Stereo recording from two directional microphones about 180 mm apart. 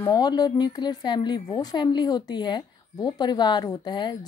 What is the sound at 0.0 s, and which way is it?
A woman's voice, 25° left (ahead or behind).